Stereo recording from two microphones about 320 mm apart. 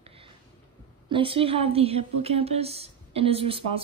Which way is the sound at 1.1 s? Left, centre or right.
Centre.